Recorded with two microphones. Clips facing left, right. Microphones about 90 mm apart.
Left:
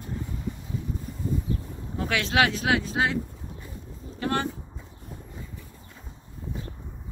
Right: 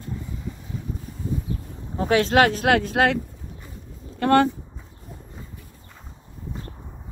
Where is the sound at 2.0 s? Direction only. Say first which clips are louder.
Right 6 dB; 35° right (ahead or behind); by 3.2 s 60° right (ahead or behind).